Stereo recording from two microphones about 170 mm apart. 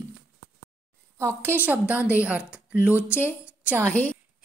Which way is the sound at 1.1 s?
15° right (ahead or behind).